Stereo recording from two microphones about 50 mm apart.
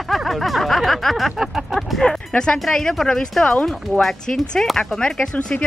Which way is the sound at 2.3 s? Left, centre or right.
Centre.